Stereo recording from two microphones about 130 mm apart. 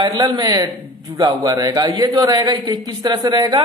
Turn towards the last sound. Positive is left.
turn(degrees=-35)  # may be behind; listen again after turning